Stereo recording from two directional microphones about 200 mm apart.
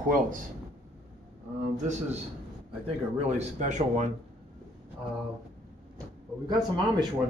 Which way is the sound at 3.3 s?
35° right (ahead or behind).